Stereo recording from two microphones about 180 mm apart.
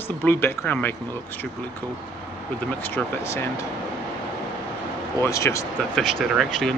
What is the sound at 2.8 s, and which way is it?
Speech, 10° left (ahead or behind).